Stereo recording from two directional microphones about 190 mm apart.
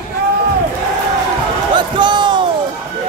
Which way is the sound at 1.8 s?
25° right (ahead or behind).